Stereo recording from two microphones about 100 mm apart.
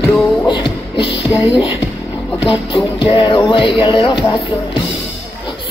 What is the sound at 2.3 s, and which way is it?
Music, 65° left (ahead or behind).